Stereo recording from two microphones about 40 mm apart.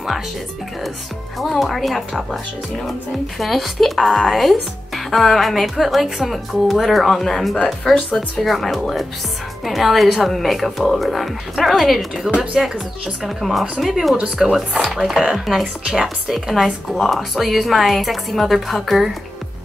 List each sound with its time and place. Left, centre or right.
1.6 s speech: centre
7.5 s speech: left
8.4 s speech: centre
14.4 s speech: centre